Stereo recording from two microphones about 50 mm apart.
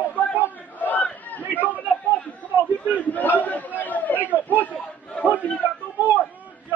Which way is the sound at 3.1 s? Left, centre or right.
Left.